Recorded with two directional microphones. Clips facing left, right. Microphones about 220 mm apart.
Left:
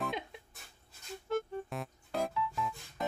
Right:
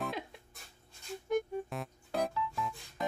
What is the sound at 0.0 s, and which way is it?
Music, centre (ahead or behind).